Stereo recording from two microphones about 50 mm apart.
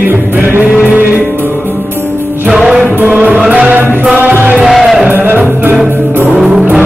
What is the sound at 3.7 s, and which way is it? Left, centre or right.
Music, right.